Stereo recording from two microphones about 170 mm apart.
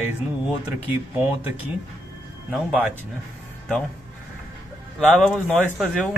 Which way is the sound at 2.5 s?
5° right (ahead or behind).